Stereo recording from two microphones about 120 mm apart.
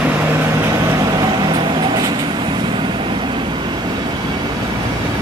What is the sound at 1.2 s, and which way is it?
Vehicle, 40° right (ahead or behind).